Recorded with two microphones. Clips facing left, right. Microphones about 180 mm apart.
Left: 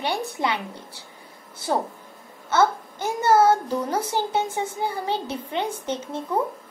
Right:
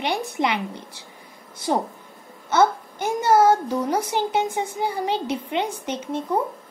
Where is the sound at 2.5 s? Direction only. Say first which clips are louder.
Right 2 dB; 15° right (ahead or behind).